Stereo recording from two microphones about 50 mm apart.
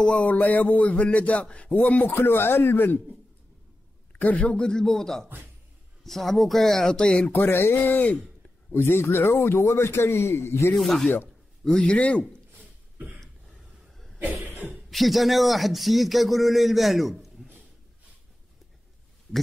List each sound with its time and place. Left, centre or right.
0.0 s a sound: left
1.8 s speech: left
2.2 s speech: left
4.1 s a man's voice: left
4.6 s speech: centre
7.3 s speech: left
8.7 s a man's voice: left
9.4 s a man's voice: left
10.7 s a man's voice: centre
11.6 s a man's voice: left
13.2 s a sound: centre
14.5 s a sound: right
14.9 s a man's voice: centre